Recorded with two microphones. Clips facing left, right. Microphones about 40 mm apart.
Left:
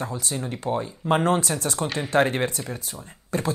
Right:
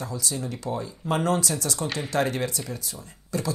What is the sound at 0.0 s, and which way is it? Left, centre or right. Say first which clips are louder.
Speech: left 2 dB; left.